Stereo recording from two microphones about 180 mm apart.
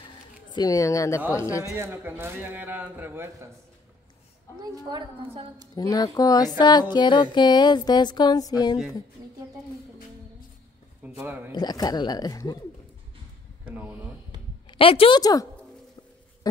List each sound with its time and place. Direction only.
0.5 s speech: 20° left (ahead or behind)
1.8 s a man's voice: 10° right (ahead or behind)
4.7 s a woman's voice: 25° right (ahead or behind)
5.8 s music: 20° left (ahead or behind)
11.1 s a man's voice: 10° right (ahead or behind)
11.5 s music: 20° left (ahead or behind)
13.7 s a man's voice: 10° right (ahead or behind)
14.7 s a woman's voice: 30° left (ahead or behind)